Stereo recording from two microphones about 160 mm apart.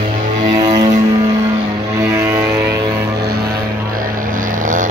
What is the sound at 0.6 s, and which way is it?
Music, 25° right (ahead or behind).